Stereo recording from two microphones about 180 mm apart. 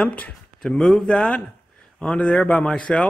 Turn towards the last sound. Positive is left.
turn(degrees=5)  # may be behind; listen again after turning